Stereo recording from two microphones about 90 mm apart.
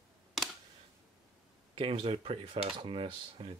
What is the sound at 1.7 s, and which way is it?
Speech, 85° right.